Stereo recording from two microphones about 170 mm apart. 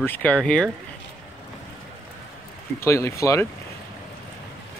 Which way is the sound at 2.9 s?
15° left (ahead or behind).